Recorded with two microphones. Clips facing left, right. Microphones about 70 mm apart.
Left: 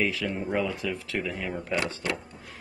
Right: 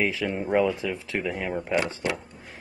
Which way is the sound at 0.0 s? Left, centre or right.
Right.